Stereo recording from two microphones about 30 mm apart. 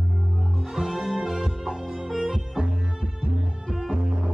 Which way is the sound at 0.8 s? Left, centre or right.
Centre.